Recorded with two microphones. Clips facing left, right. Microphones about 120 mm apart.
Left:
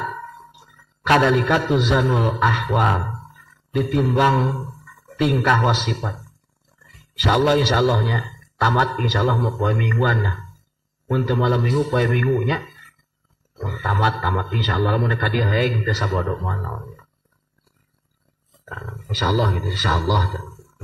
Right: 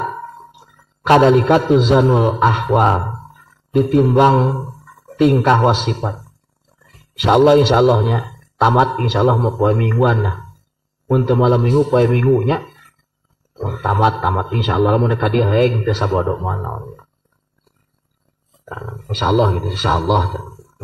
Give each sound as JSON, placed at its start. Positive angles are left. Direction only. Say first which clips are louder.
{"t": 0.0, "sound": "a sound", "louder": "right 5 dB", "side_deg": -30}
{"t": 2.1, "sound": "a man's voice", "louder": "right 5 dB", "side_deg": -25}
{"t": 18.7, "sound": "a man's voice", "louder": "right 5 dB", "side_deg": -35}